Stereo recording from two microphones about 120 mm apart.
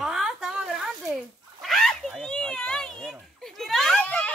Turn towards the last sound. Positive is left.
turn(degrees=10)  # may be behind; listen again after turning